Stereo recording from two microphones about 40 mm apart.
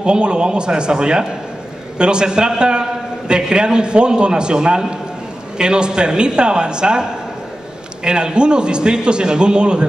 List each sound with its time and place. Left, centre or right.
0.0 s a man's voice: right